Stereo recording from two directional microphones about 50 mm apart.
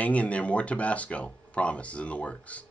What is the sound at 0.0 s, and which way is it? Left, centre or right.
Speech, left.